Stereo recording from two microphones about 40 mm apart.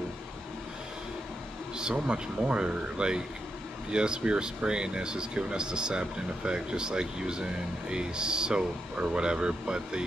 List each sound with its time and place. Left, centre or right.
1.8 s speech: right